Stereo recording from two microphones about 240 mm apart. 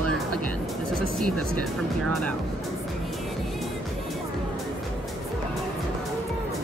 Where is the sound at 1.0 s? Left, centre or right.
Centre.